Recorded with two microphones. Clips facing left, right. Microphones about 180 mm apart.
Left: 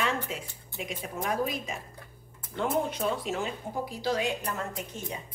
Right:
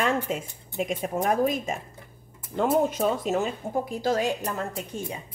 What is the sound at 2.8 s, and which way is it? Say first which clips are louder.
A woman's voice: right 5 dB; 45° right (ahead or behind).